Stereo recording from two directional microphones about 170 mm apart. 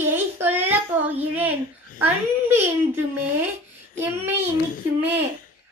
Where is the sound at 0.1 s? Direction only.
15° right (ahead or behind).